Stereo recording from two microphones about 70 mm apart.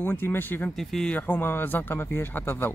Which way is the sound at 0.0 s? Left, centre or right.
Left.